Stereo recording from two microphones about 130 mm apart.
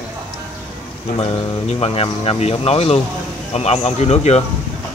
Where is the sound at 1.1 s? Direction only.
45° left (ahead or behind).